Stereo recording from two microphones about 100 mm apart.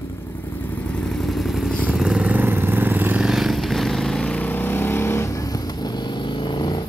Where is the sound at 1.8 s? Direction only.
10° right (ahead or behind).